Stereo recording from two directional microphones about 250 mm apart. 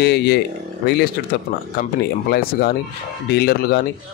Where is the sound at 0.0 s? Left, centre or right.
Left.